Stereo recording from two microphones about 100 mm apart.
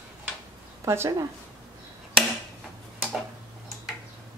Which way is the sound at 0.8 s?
25° right (ahead or behind).